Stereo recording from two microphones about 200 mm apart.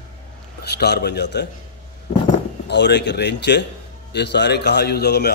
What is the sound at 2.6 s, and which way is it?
A man's voice, 60° left (ahead or behind).